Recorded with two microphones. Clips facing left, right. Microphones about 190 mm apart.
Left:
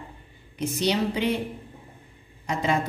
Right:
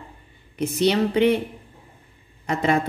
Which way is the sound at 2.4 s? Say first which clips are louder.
Right 4 dB; 60° right (ahead or behind).